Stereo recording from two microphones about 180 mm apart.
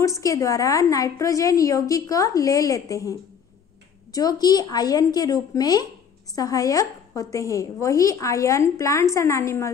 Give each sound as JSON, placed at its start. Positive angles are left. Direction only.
{"t": 0.0, "sound": "a woman's voice", "side_deg": 15}